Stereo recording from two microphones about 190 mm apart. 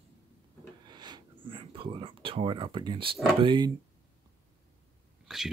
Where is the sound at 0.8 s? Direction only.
25° right (ahead or behind).